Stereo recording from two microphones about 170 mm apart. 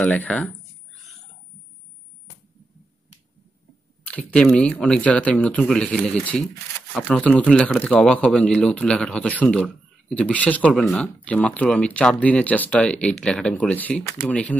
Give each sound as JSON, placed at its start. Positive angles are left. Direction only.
{"t": 0.0, "sound": "speech", "side_deg": 10}
{"t": 4.1, "sound": "speech", "side_deg": 5}